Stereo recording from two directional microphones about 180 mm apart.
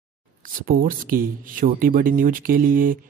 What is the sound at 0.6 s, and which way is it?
Speech, 50° right (ahead or behind).